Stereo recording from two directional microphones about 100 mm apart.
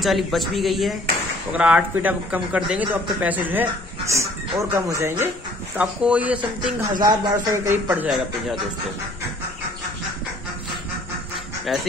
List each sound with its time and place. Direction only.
0.0 s speech: centre (ahead or behind)
1.5 s speech: 10° right (ahead or behind)
4.1 s speech: 30° right (ahead or behind)
5.8 s speech: 15° right (ahead or behind)
6.8 s speech: 40° right (ahead or behind)
7.5 s a man's voice: 25° right (ahead or behind)
11.7 s speech: centre (ahead or behind)